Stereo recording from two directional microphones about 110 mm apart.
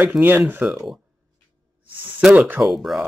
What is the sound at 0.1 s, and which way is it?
Speech, 15° right (ahead or behind).